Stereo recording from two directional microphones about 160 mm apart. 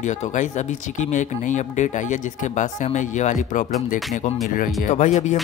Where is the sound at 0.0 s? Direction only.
50° left (ahead or behind).